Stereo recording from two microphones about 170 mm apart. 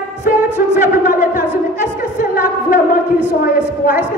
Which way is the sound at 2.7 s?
50° left (ahead or behind).